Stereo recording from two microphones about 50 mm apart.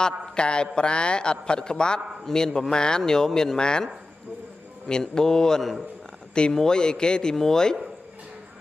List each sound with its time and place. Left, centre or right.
0.0 s a man's voice: centre
4.8 s a man's voice: centre
6.3 s a man's voice: centre